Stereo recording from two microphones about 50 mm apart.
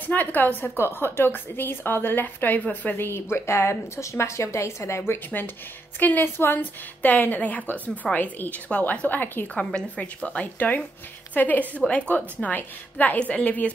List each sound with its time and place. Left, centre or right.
0.0 s a woman's voice: left
0.7 s a woman's voice: left
6.2 s a woman's voice: left
6.6 s a woman's voice: left
9.6 s a woman's voice: centre